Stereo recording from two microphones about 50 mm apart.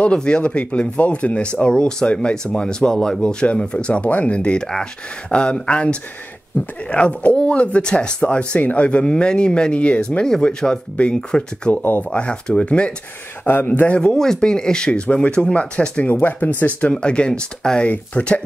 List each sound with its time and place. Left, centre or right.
0.0 s speech: centre
11.7 s a man's voice: left
12.1 s speech: left
13.4 s a man's voice: left
13.8 s speech: centre
16.1 s speech: left; by 17.8 s centre
17.8 s speech: left